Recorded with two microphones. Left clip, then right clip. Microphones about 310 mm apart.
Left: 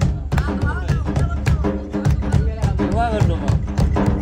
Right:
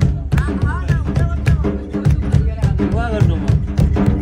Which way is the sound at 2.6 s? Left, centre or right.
Left.